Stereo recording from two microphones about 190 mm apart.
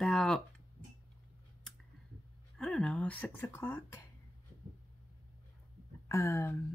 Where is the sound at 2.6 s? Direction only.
5° left (ahead or behind).